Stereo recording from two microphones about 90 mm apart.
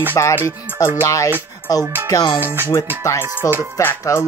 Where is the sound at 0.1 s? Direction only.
30° left (ahead or behind); by 2.3 s 45° left (ahead or behind).